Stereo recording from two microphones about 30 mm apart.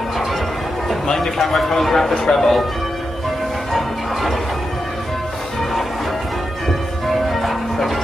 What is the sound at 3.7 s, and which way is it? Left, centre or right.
Music, centre.